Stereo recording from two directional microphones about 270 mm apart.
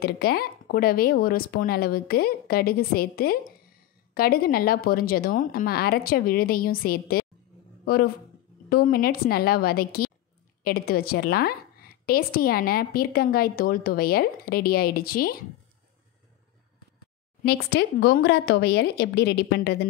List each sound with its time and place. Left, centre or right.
0.0 s a woman's voice: left
17.4 s a woman's voice: left